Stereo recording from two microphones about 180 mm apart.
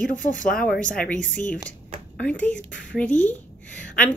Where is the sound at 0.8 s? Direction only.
5° left (ahead or behind).